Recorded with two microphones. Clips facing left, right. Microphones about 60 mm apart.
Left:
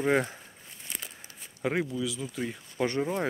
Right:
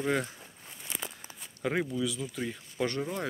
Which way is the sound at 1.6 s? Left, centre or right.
Centre.